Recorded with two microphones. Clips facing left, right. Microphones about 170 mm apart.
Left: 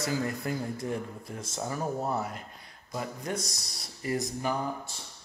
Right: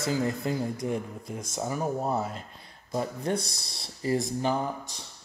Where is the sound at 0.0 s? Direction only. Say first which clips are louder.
Right 3 dB; 25° right (ahead or behind).